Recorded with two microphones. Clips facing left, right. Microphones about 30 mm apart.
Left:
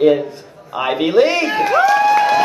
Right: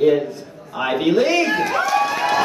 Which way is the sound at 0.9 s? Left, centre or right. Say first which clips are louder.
Left 3 dB; centre.